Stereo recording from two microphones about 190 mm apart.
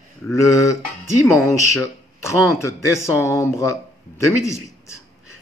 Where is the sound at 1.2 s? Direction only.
15° left (ahead or behind).